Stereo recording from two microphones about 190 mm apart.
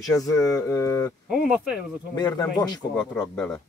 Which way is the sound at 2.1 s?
20° left (ahead or behind).